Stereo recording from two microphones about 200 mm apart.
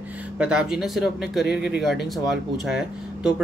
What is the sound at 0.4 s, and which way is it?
Speech, 5° right (ahead or behind).